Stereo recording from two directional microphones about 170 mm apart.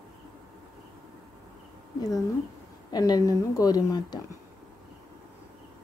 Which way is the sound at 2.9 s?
20° left (ahead or behind).